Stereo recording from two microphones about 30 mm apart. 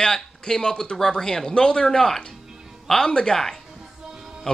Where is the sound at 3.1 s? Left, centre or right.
Left.